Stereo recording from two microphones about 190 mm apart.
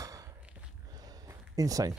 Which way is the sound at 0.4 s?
5° right (ahead or behind).